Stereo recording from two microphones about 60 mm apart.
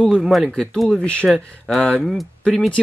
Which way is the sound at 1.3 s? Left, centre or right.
Centre.